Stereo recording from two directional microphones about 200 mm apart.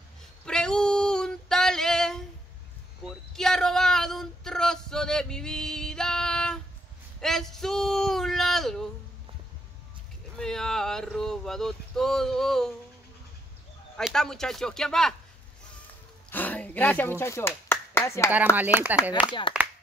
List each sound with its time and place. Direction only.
0.5 s female singing: 5° left (ahead or behind)
3.0 s a sound: centre (ahead or behind)
10.3 s a sound: 5° left (ahead or behind)
13.9 s speech: centre (ahead or behind)
16.3 s finger snapping: 10° left (ahead or behind)
18.8 s speech: 10° right (ahead or behind)
19.2 s speech: 25° left (ahead or behind)